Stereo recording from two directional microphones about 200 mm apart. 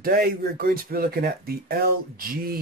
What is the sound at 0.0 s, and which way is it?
Speech, 50° right (ahead or behind).